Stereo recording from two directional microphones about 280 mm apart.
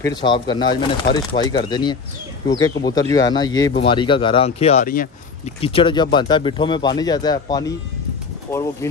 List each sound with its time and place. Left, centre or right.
0.0 s speech: centre